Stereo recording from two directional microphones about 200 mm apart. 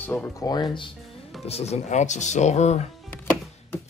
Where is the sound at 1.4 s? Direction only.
30° left (ahead or behind).